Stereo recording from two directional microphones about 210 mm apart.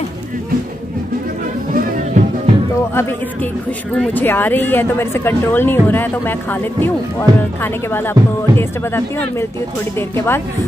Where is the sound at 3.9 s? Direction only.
5° left (ahead or behind).